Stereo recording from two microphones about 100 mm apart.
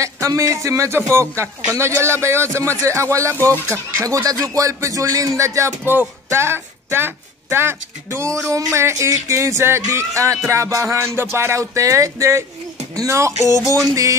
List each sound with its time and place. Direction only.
0.0 s speech: 30° right (ahead or behind)